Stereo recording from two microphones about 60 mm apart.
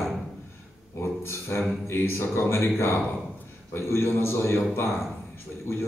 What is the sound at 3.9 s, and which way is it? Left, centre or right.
Speech, left.